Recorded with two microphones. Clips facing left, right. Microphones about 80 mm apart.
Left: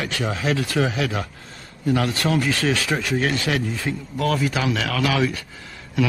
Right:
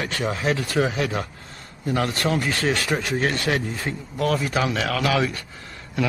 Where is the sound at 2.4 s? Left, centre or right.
Left.